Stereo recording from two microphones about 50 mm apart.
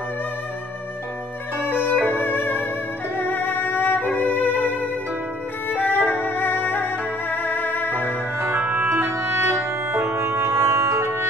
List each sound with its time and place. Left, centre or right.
1.9 s violin: left
2.2 s music: left
4.2 s violin: left
5.7 s violin: left
6.2 s music: left
8.4 s music: right
9.9 s music: right